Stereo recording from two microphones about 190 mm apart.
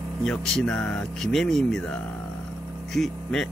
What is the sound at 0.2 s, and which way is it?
Speech, centre (ahead or behind).